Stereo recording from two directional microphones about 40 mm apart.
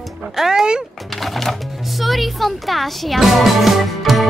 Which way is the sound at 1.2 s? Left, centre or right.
Centre.